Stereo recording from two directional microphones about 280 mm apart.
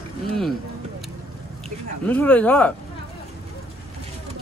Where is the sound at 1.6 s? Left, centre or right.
Centre.